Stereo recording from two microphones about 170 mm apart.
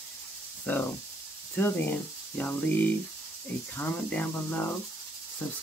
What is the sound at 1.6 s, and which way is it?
Speech, 10° left (ahead or behind).